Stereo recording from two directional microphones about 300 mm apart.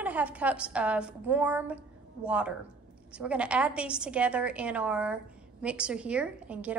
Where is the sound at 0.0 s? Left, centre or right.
Centre.